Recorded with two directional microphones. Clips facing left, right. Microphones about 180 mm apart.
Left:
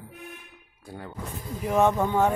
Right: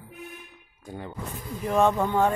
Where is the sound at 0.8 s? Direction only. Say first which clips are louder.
Right 2 dB; 15° right (ahead or behind).